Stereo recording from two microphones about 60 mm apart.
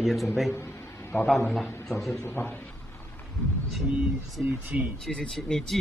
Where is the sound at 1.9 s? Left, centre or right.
Centre.